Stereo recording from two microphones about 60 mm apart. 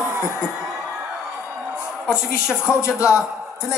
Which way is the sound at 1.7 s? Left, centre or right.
Centre.